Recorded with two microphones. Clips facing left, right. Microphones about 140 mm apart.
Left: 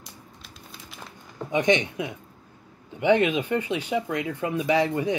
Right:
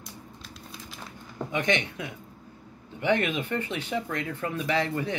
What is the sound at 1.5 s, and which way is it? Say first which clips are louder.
Speech: left 6 dB; 20° left (ahead or behind).